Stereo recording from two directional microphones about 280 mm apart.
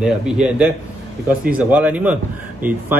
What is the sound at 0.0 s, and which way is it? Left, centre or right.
Speech, centre.